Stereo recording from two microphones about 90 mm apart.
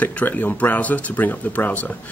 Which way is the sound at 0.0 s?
15° left (ahead or behind).